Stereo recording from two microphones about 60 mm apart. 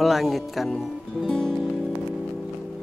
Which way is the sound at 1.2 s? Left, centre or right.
Centre.